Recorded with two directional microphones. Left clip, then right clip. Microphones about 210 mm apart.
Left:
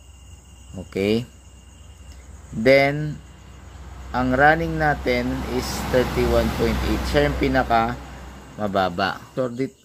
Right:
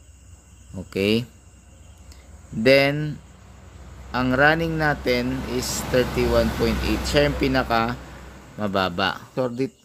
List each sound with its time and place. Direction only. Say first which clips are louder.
0.8 s speech: even; 15° right (ahead or behind)
2.6 s speech: left 1 dB; 15° right (ahead or behind)